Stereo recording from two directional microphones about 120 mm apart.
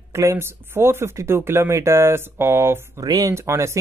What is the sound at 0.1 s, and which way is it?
Speech, 25° right (ahead or behind).